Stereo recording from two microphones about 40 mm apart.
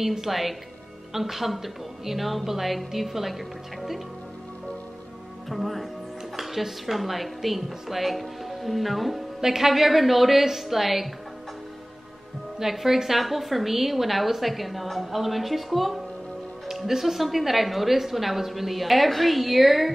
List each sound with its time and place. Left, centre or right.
0.0 s a woman's voice: centre
5.5 s music: centre
6.3 s a woman's voice: centre
12.5 s a woman's voice: centre